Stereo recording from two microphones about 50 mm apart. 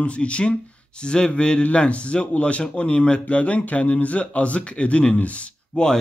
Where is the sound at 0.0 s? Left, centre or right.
Left.